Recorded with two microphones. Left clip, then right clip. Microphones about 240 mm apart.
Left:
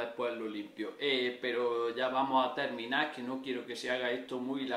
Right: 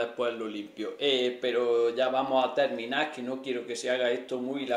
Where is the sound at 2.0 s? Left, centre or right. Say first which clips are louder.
Right 4 dB; centre.